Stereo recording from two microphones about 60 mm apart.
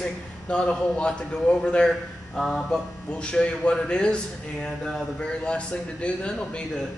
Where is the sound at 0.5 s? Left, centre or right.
Centre.